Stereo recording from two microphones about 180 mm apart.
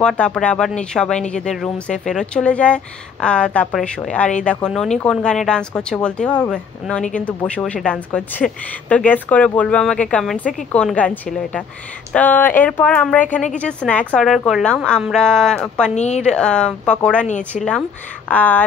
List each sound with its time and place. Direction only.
0.0 s speech: 5° left (ahead or behind)
15.9 s speech: 40° left (ahead or behind)
16.2 s speech: 5° left (ahead or behind)
18.3 s speech: 10° left (ahead or behind)